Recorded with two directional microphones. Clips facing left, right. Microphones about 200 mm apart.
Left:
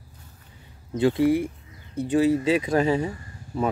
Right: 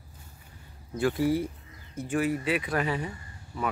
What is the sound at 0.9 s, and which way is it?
Speech, 20° left (ahead or behind).